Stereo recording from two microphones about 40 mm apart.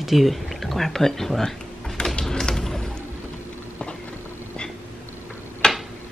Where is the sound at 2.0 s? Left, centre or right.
Centre.